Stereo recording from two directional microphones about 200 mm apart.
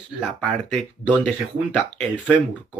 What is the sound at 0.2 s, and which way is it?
Speech, centre (ahead or behind).